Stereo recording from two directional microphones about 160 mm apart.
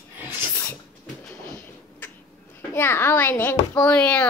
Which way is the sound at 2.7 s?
15° left (ahead or behind).